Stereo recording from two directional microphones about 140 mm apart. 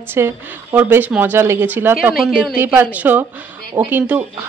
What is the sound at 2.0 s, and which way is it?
Speech, 5° right (ahead or behind).